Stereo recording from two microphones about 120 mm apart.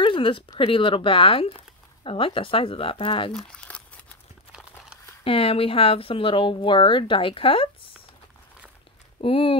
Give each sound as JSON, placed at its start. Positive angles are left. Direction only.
{"t": 0.0, "sound": "speech", "side_deg": 45}
{"t": 3.3, "sound": "crumpling", "side_deg": 10}
{"t": 4.5, "sound": "a sound", "side_deg": -10}
{"t": 5.2, "sound": "speech", "side_deg": 50}
{"t": 9.2, "sound": "speech", "side_deg": 50}